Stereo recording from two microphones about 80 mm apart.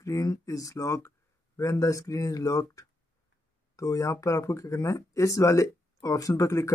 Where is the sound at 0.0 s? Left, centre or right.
Left.